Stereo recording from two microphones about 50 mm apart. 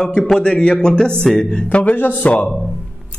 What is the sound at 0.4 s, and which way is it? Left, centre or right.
Speech, centre.